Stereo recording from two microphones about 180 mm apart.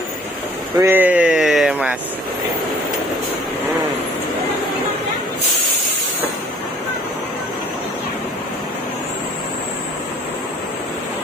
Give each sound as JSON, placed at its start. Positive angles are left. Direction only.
{"t": 0.7, "sound": "speech", "side_deg": -10}